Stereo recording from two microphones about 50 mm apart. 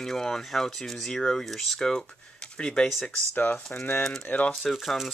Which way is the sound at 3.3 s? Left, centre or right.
Left.